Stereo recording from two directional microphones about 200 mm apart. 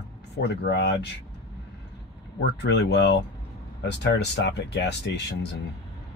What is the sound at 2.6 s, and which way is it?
Speech, 55° left (ahead or behind).